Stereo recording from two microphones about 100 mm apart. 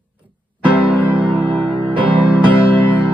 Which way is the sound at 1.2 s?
55° right (ahead or behind).